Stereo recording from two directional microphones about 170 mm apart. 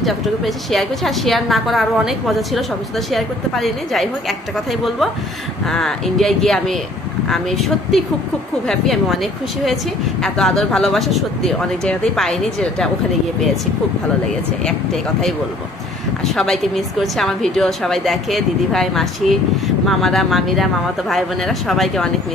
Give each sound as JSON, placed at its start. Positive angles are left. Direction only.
{"t": 0.0, "sound": "a woman's voice", "side_deg": 0}
{"t": 5.7, "sound": "a woman's voice", "side_deg": 5}
{"t": 16.3, "sound": "a woman's voice", "side_deg": 0}